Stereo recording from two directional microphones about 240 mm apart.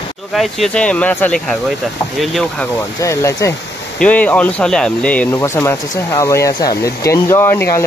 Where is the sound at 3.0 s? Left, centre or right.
Centre.